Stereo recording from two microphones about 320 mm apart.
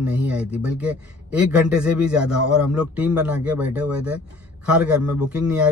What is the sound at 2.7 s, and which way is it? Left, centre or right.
Speech, centre.